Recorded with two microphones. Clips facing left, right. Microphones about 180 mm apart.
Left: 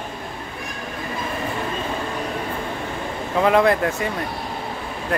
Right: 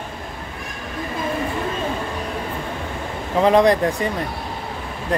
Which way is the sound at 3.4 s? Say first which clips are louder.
Right 2 dB; 20° right (ahead or behind).